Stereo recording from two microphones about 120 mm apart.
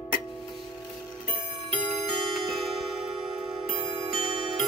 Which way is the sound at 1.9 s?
55° right (ahead or behind).